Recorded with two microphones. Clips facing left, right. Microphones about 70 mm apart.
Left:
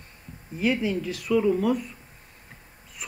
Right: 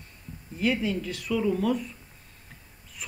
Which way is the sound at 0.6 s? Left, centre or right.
Centre.